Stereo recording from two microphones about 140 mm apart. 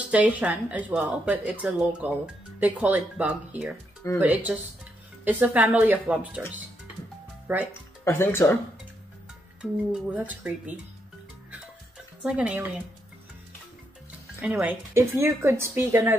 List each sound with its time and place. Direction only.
0.1 s speech: 10° right (ahead or behind)
7.5 s speech: 10° right (ahead or behind)
8.0 s speech: 15° left (ahead or behind)
10.1 s speech: 10° right (ahead or behind)
12.2 s speech: 5° right (ahead or behind)
14.4 s speech: 10° right (ahead or behind)